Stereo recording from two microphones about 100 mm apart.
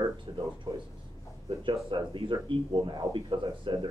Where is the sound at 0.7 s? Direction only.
65° right (ahead or behind).